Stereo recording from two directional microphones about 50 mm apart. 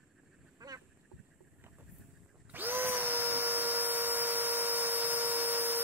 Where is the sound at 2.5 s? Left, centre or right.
Right.